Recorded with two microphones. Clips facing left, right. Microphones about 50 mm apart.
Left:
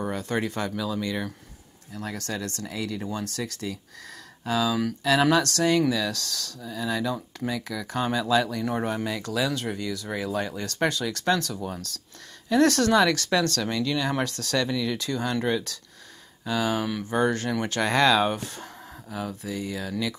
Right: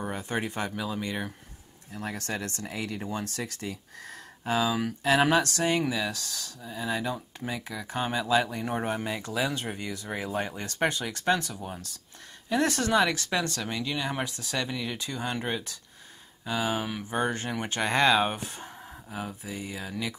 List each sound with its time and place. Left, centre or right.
0.1 s speech: right